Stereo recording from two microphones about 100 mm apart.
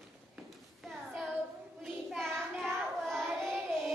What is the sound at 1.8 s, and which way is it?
Child singing, 5° left (ahead or behind).